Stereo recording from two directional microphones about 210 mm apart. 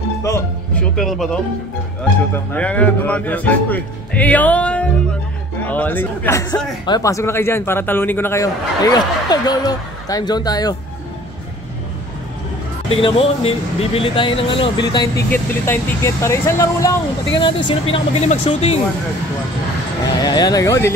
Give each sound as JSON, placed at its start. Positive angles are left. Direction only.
{"t": 0.2, "sound": "music", "side_deg": 15}
{"t": 0.9, "sound": "a man's voice", "side_deg": 0}
{"t": 12.9, "sound": "speech", "side_deg": 25}
{"t": 15.3, "sound": "a man's voice", "side_deg": 10}
{"t": 20.2, "sound": "a man's voice", "side_deg": 20}